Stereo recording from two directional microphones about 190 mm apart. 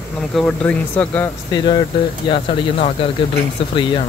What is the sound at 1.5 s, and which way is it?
Speech, 25° left (ahead or behind).